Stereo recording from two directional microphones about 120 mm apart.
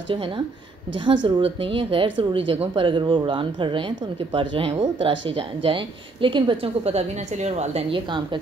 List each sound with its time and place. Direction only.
0.9 s speech: 45° right (ahead or behind); by 7.8 s 65° right (ahead or behind)
7.9 s a woman's voice: 40° right (ahead or behind)